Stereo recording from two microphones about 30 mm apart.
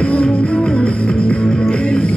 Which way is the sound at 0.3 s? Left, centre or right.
Left.